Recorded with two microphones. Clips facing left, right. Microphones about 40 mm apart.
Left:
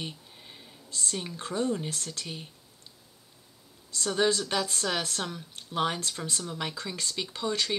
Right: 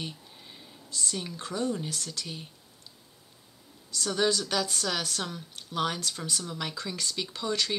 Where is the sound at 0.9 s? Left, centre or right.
Left.